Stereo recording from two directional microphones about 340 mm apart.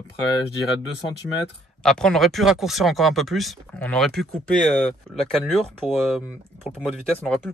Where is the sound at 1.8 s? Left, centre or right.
Centre.